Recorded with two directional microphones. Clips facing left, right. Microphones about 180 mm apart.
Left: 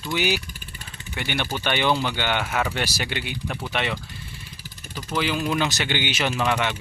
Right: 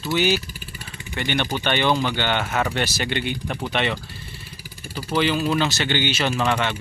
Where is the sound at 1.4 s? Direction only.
15° right (ahead or behind).